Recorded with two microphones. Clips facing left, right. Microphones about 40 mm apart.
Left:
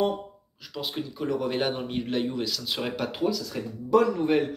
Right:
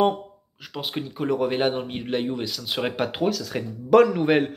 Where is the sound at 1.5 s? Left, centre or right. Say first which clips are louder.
Right 3 dB; right.